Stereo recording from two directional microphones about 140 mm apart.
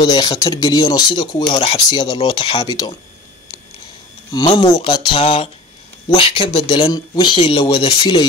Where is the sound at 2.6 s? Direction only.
30° left (ahead or behind).